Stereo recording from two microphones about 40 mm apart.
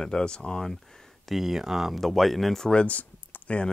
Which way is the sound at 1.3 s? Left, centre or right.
Centre.